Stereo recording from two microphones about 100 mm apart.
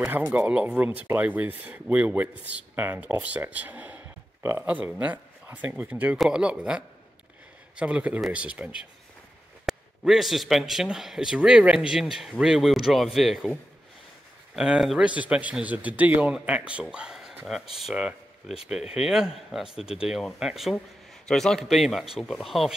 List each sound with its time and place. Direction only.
0.0 s speech: 15° right (ahead or behind)
4.6 s speech: 15° right (ahead or behind)
9.7 s a man's voice: centre (ahead or behind)
14.5 s speech: 5° right (ahead or behind)
16.9 s a sound: 5° right (ahead or behind)
17.8 s a man's voice: 10° right (ahead or behind)